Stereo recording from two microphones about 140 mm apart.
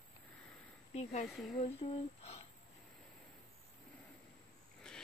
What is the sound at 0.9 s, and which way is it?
Speech, 55° left (ahead or behind).